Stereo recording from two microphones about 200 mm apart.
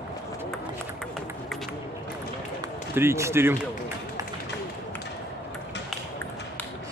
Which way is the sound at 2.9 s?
15° right (ahead or behind).